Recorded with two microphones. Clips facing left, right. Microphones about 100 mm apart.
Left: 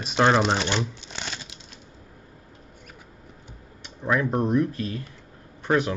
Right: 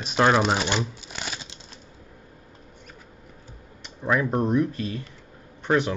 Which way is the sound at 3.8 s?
Centre (ahead or behind).